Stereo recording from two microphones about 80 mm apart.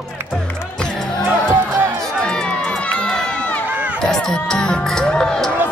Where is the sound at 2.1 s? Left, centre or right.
Centre.